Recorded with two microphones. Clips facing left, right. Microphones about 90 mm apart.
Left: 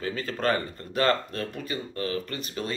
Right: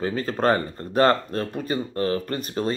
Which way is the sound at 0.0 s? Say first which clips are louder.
Right 5 dB; 35° right (ahead or behind).